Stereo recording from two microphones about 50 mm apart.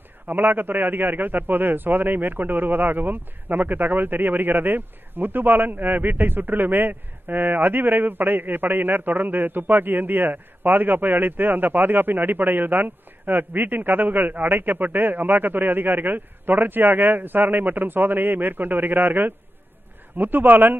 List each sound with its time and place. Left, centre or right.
0.3 s a man's voice: right